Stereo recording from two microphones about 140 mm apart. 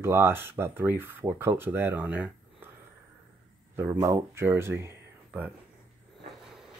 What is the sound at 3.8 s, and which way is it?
Speech, 20° right (ahead or behind).